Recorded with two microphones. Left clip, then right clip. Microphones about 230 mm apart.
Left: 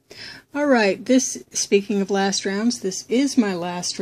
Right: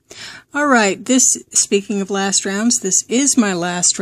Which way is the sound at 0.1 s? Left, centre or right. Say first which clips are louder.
Right 6 dB; right.